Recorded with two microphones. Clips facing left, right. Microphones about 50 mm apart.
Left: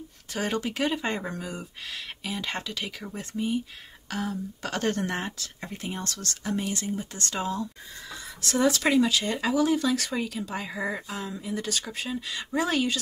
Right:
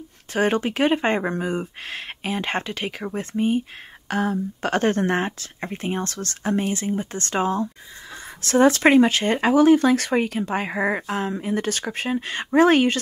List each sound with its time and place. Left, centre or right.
0.3 s speech: right